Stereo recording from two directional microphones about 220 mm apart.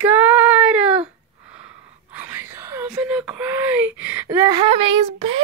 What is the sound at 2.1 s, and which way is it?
Wail, 10° right (ahead or behind).